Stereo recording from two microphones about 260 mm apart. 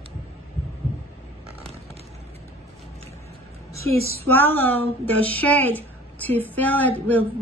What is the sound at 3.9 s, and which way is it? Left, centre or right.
Speech, left.